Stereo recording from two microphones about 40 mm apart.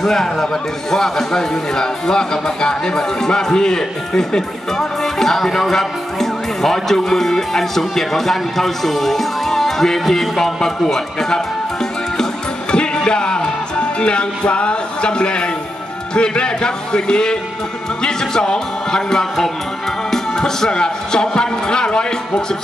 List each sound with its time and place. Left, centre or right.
0.0 s a man's voice: centre
12.7 s music: left
16.2 s a man's voice: left